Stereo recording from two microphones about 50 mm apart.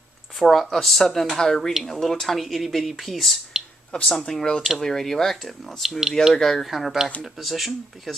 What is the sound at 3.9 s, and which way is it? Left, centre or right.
Speech, centre.